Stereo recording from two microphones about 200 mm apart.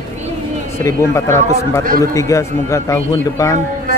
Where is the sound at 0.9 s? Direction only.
15° left (ahead or behind).